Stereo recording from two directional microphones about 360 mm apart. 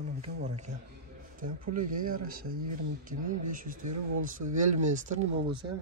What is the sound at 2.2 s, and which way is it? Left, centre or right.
Speech, right.